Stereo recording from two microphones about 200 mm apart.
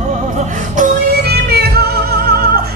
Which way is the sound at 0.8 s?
50° right (ahead or behind).